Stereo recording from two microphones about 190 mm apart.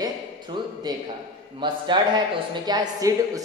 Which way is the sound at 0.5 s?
25° right (ahead or behind).